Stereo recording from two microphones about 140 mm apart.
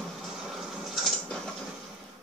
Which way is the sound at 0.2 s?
Centre (ahead or behind).